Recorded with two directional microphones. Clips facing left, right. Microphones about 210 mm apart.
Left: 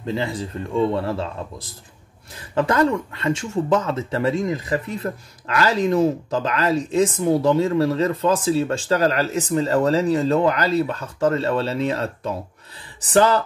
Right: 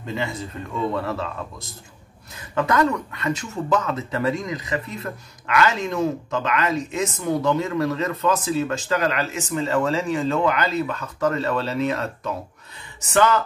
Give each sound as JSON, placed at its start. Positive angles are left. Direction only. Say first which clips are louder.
{"t": 0.0, "sound": "speech", "louder": "left 3 dB", "side_deg": 30}